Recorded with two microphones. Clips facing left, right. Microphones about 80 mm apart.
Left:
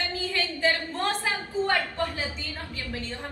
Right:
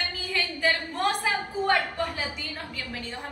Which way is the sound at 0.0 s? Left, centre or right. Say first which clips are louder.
Left 1 dB; right.